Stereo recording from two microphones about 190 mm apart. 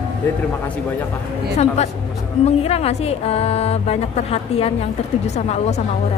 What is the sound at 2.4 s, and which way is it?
A woman's voice, 30° left (ahead or behind).